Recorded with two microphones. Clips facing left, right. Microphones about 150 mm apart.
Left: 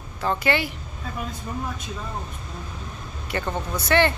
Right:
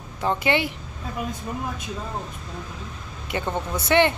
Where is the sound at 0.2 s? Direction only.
20° right (ahead or behind).